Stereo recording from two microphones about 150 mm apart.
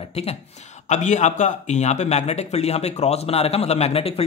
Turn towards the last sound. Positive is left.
turn(degrees=40)  # may be behind; listen again after turning